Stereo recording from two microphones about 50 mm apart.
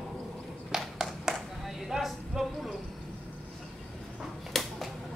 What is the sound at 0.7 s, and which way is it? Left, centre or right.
Clapping, centre.